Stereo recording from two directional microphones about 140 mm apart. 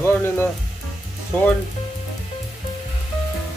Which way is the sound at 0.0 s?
15° left (ahead or behind).